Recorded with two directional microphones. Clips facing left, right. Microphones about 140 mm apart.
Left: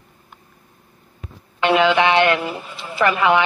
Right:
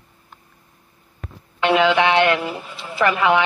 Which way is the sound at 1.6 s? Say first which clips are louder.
Left 1 dB; 20° left (ahead or behind).